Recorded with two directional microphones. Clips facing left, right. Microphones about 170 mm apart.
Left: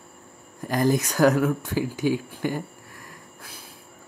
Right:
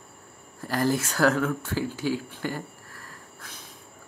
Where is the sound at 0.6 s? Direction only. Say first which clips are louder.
Left 3 dB; 15° left (ahead or behind).